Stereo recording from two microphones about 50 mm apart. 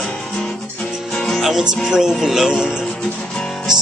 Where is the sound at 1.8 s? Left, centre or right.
Centre.